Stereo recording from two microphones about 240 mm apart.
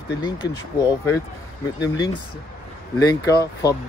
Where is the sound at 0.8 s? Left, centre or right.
Centre.